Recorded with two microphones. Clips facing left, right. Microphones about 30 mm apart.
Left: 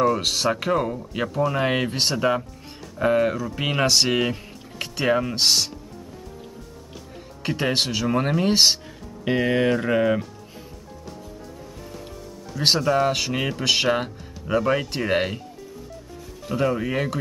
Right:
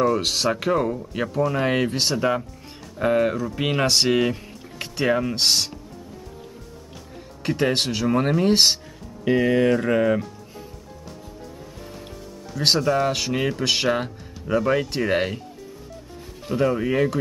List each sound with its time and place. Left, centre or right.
0.0 s speech: centre
7.4 s speech: centre
9.2 s music: centre
9.7 s music: centre
12.5 s speech: centre
16.4 s speech: centre